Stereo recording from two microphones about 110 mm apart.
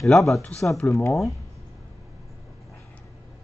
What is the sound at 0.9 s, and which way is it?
Speech, 30° left (ahead or behind).